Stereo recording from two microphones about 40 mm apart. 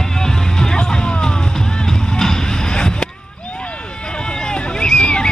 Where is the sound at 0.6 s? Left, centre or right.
Centre.